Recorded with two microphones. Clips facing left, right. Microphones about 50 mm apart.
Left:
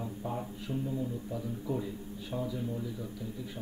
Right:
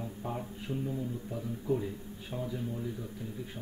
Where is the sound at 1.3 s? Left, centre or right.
Centre.